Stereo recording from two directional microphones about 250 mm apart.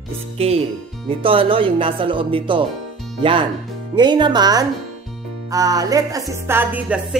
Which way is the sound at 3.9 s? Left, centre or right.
Centre.